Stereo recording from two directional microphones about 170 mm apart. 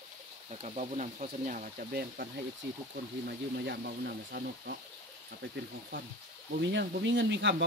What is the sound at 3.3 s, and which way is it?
Speech, 75° right (ahead or behind).